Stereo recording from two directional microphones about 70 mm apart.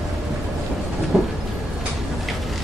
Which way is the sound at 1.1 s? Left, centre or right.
Centre.